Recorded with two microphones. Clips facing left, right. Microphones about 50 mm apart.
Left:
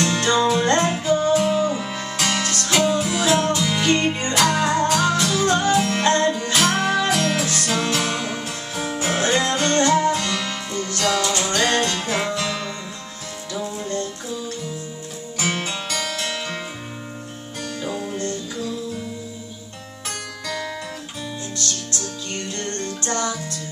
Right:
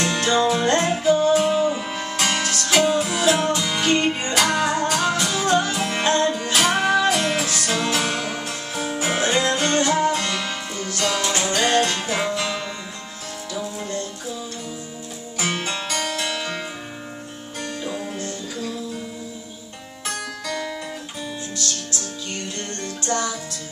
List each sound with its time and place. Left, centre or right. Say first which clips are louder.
0.0 s music: left 1 dB; centre
7.4 s music: left 1 dB; centre
7.7 s music: even; centre
11.5 s music: right 2 dB; centre
13.7 s music: left 2 dB; centre
15.3 s music: even; centre
17.7 s music: left 3 dB; centre
20.1 s music: right 2 dB; centre
22.6 s music: left 2 dB; centre